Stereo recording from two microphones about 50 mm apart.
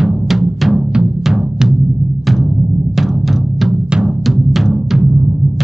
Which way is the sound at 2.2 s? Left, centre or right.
Centre.